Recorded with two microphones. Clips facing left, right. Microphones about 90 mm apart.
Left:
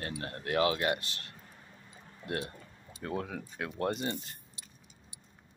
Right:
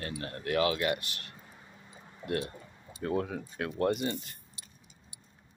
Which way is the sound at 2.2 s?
20° right (ahead or behind).